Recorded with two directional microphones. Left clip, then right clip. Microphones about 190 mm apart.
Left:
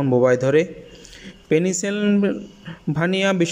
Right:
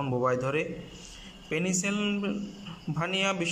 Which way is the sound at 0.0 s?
35° left (ahead or behind).